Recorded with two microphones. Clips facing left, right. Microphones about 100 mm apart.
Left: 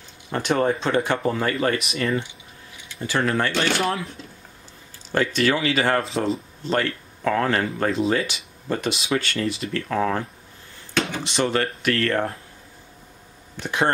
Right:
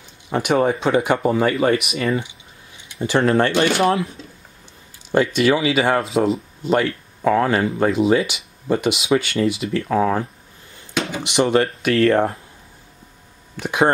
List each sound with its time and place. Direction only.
0.3 s speech: 10° right (ahead or behind)
2.9 s speech: 25° right (ahead or behind)
5.1 s speech: 15° right (ahead or behind)
11.0 s a sound: 10° right (ahead or behind)
11.3 s speech: 20° right (ahead or behind)
13.6 s speech: 15° right (ahead or behind)